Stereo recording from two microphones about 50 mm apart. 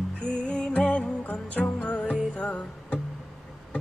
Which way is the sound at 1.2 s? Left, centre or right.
Left.